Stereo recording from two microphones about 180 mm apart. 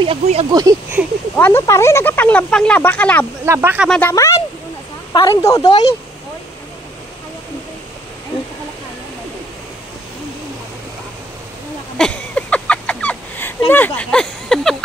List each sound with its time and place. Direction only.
0.0 s speech: 35° right (ahead or behind)
0.5 s speech: 20° right (ahead or behind)
1.3 s speech: 10° left (ahead or behind)
3.4 s speech: 15° right (ahead or behind)
4.1 s speech: 15° left (ahead or behind)
12.0 s a sound: 5° left (ahead or behind)
13.7 s speech: 10° left (ahead or behind)